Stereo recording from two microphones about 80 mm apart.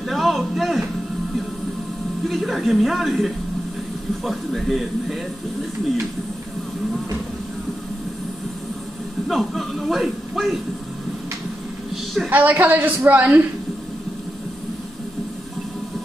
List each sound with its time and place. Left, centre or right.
0.1 s a sound: centre
2.2 s speech: centre
9.3 s speech: centre
12.3 s a woman's voice: right